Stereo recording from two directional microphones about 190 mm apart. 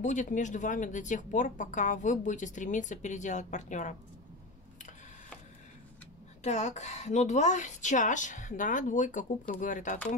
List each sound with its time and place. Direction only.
0.0 s speech: 40° left (ahead or behind)
6.4 s speech: 40° left (ahead or behind)